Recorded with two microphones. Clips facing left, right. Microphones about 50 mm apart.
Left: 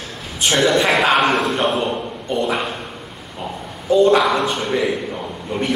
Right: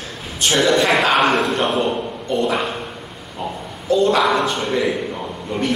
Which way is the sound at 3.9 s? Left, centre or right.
Centre.